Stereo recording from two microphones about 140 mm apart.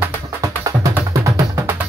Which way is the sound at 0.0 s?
20° right (ahead or behind).